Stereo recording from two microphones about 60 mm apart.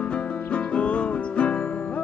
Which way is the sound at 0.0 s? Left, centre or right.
Centre.